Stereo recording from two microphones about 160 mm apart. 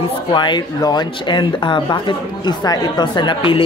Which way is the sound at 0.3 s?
30° left (ahead or behind).